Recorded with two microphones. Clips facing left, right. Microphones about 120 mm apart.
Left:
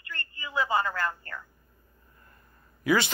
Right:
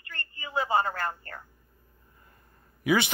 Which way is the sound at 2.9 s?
15° right (ahead or behind).